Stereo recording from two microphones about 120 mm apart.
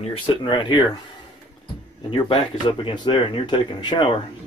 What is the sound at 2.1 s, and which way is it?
Speech, 45° left (ahead or behind).